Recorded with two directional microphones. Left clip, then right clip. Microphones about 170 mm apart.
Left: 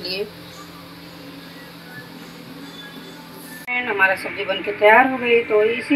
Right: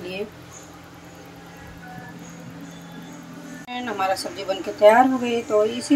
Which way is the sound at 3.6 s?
10° right (ahead or behind).